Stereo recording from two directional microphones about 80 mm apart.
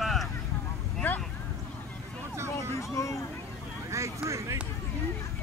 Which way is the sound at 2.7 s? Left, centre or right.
Left.